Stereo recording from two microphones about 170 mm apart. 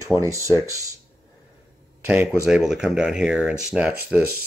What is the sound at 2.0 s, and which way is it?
Speech, 10° right (ahead or behind).